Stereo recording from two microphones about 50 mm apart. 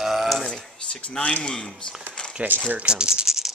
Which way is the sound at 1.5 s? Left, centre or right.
Centre.